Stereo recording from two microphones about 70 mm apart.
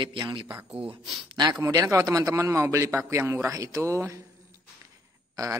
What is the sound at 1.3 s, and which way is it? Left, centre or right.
Speech, right.